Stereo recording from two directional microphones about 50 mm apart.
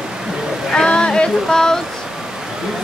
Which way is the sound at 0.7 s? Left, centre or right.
Centre.